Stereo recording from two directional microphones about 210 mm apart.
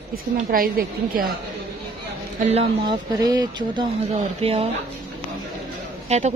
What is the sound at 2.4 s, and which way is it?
Speech, 30° right (ahead or behind).